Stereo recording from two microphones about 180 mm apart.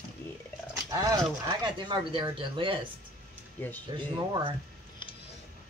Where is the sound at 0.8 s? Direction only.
20° right (ahead or behind).